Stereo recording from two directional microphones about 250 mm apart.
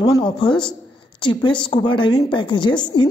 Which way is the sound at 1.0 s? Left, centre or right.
Centre.